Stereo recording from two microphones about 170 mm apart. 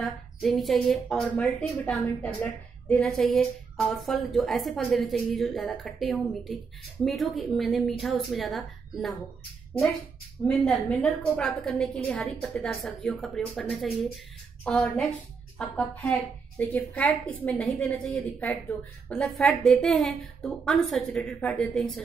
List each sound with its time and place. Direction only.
0.0 s a woman's voice: centre (ahead or behind)
10.4 s a woman's voice: 5° left (ahead or behind)